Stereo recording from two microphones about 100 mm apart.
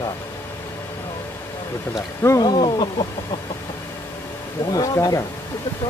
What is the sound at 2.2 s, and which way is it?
Speech, 30° left (ahead or behind).